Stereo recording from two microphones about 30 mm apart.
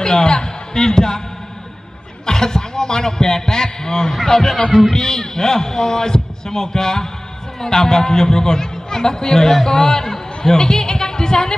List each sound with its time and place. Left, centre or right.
0.0 s a man's voice: left
2.2 s a man's voice: centre
4.1 s a man's voice: centre